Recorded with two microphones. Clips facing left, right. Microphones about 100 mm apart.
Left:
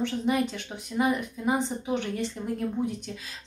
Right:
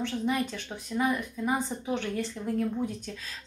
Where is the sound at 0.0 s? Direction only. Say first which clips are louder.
Left 3 dB; 20° left (ahead or behind).